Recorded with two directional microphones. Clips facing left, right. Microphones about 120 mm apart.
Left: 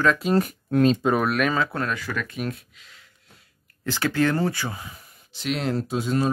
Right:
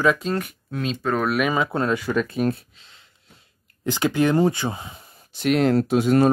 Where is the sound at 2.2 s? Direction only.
35° right (ahead or behind).